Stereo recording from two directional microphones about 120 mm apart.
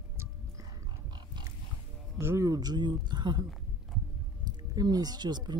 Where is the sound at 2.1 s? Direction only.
25° right (ahead or behind); by 3.4 s 40° right (ahead or behind).